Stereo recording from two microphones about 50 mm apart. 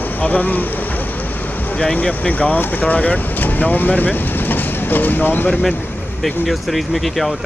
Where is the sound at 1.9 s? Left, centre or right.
Left.